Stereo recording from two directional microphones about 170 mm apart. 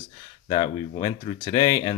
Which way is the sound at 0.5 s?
30° left (ahead or behind).